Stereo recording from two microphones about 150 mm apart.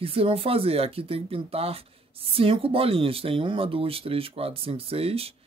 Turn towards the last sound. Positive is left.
turn(degrees=-40)  # may be behind; listen again after turning